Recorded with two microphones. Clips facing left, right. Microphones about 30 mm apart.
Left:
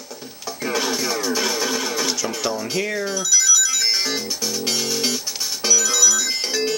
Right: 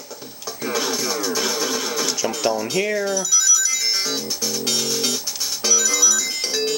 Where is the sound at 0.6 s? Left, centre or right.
Centre.